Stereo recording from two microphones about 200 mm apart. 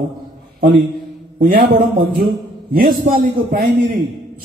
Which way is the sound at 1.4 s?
45° right (ahead or behind).